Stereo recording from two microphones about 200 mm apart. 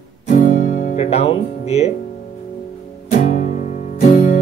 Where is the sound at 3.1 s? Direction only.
40° left (ahead or behind).